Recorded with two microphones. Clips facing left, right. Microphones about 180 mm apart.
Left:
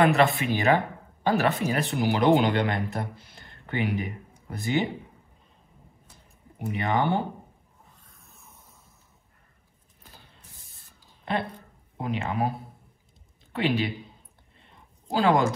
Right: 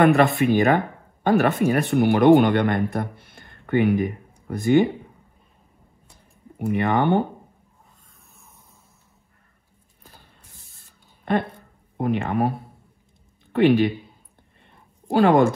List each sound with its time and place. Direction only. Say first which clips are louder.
0.4 s speech: right 5 dB; 55° right (ahead or behind)
6.6 s speech: right 5 dB; 55° right (ahead or behind)
12.0 s speech: right 6 dB; 55° right (ahead or behind)
13.6 s speech: right 9 dB; 55° right (ahead or behind)
15.0 s speech: right 6 dB; 60° right (ahead or behind)